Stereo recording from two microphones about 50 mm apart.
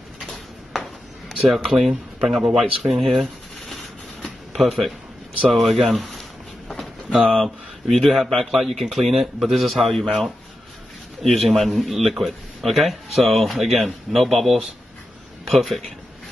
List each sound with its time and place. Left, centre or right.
1.3 s a man's voice: centre
3.6 s shuffling cards: centre
5.5 s a man's voice: centre
7.1 s speech: centre
7.4 s a man's voice: centre